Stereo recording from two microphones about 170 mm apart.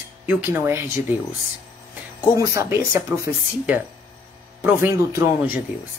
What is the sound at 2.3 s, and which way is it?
Speech, 20° right (ahead or behind).